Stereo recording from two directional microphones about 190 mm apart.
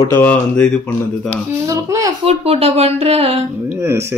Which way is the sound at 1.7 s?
15° right (ahead or behind).